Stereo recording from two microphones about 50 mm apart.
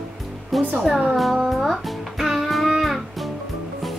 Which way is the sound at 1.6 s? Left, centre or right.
Centre.